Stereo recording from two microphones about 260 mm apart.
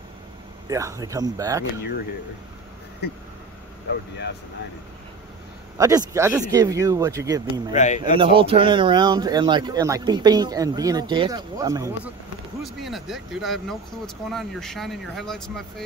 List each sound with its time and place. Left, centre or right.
0.7 s speech: centre
5.8 s speech: centre
7.7 s speech: left
8.2 s speech: centre
12.6 s speech: centre